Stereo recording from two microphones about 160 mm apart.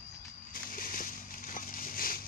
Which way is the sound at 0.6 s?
60° left (ahead or behind).